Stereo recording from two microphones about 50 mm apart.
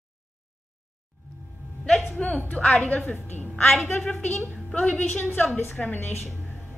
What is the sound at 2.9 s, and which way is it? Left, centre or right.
Speech, left.